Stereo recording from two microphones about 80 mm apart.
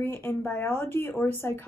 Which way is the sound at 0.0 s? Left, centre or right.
Left.